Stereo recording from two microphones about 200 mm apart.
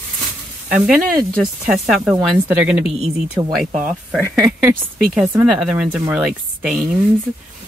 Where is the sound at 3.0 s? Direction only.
20° right (ahead or behind).